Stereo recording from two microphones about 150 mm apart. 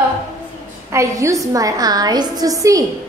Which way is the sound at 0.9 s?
20° right (ahead or behind).